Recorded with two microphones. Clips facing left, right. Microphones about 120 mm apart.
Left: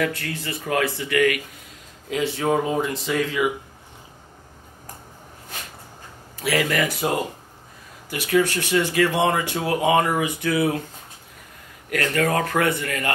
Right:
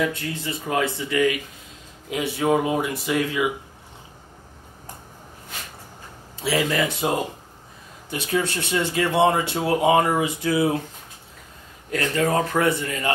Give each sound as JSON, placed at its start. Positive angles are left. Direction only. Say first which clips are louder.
{"t": 0.0, "sound": "speech", "louder": "even", "side_deg": -20}
{"t": 2.1, "sound": "speech", "louder": "left 2 dB", "side_deg": 25}
{"t": 2.4, "sound": "speech", "louder": "right 2 dB", "side_deg": -15}
{"t": 6.4, "sound": "speech", "louder": "even", "side_deg": -25}
{"t": 11.9, "sound": "speech", "louder": "even", "side_deg": -25}